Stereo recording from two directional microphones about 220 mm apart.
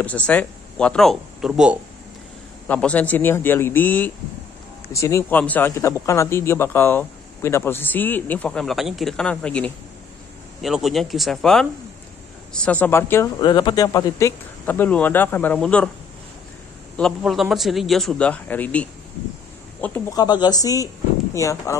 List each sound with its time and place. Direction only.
0.3 s a man's voice: 5° left (ahead or behind)
2.7 s a man's voice: 5° left (ahead or behind)
16.9 s a man's voice: centre (ahead or behind)